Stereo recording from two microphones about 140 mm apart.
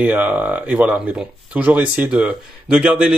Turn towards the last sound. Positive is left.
turn(degrees=-5)  # may be behind; listen again after turning